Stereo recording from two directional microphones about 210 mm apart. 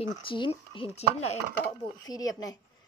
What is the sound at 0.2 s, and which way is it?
Speech, 25° left (ahead or behind).